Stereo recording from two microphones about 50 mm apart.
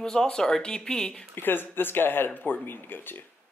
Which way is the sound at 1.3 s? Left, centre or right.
Left.